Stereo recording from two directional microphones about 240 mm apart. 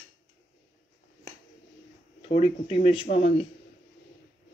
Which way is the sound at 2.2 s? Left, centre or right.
Left.